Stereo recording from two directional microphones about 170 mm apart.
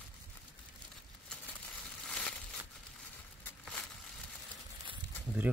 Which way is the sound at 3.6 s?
Centre (ahead or behind).